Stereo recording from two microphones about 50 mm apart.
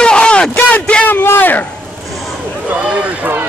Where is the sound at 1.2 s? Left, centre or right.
Left.